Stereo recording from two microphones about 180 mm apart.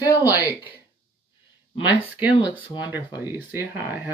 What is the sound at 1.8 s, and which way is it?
Speech, 30° left (ahead or behind).